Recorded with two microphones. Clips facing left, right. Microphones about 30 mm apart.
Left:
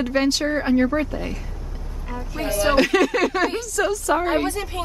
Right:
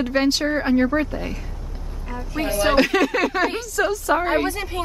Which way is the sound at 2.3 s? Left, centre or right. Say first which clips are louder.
Right 1 dB; centre.